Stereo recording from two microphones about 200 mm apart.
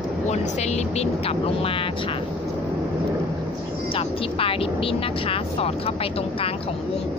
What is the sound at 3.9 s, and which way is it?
Speech, 25° left (ahead or behind).